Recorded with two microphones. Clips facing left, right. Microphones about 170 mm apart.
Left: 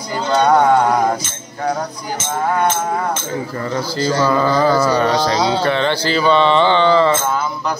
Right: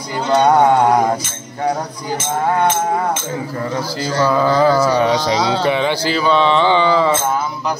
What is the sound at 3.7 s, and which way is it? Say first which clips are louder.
Speech: left 5 dB; 10° right (ahead or behind).